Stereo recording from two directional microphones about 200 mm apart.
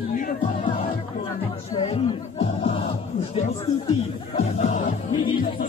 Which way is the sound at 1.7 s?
30° left (ahead or behind).